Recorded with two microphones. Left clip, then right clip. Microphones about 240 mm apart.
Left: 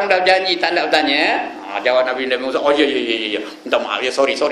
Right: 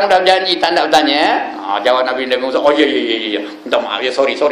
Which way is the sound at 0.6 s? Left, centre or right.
Right.